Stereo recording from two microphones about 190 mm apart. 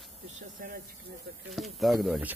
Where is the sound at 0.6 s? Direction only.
50° right (ahead or behind).